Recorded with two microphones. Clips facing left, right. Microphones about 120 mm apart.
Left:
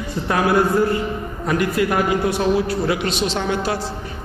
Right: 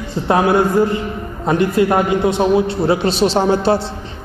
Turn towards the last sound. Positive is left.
turn(degrees=-30)  # may be behind; listen again after turning